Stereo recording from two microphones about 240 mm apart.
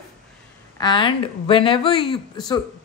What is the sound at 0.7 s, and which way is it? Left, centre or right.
A woman's voice, centre.